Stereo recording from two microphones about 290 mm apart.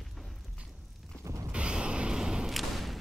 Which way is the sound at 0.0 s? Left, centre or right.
Centre.